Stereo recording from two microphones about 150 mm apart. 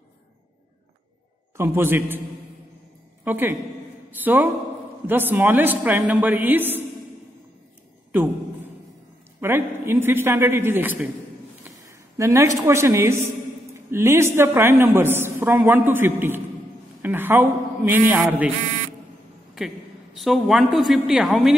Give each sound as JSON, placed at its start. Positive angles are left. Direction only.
{"t": 1.6, "sound": "a woman's voice", "side_deg": -15}
{"t": 3.3, "sound": "a woman's voice", "side_deg": -15}
{"t": 9.4, "sound": "a woman's voice", "side_deg": -15}
{"t": 20.2, "sound": "a woman's voice", "side_deg": 0}